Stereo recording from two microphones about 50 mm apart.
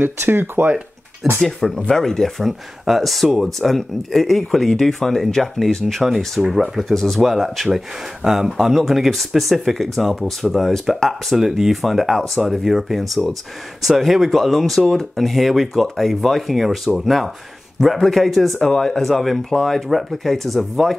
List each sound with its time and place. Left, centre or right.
0.0 s speech: right
1.4 s speech: centre
6.0 s speech: centre